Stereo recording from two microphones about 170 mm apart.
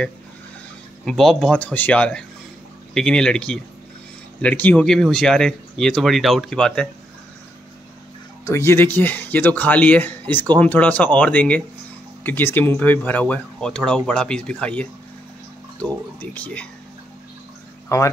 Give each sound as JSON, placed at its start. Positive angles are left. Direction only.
{"t": 1.0, "sound": "speech", "side_deg": 0}
{"t": 8.5, "sound": "speech", "side_deg": 15}
{"t": 17.8, "sound": "speech", "side_deg": 15}